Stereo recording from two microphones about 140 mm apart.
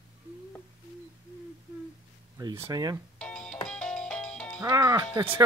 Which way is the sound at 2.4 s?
30° right (ahead or behind).